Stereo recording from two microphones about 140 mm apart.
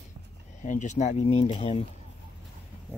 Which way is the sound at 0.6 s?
60° left (ahead or behind).